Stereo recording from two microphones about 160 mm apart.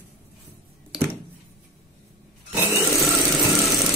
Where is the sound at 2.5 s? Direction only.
20° right (ahead or behind).